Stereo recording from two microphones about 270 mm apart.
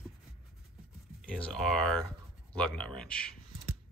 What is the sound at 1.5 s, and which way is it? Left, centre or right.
Speech, centre.